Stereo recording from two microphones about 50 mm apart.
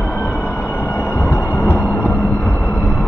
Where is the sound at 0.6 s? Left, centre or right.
Left.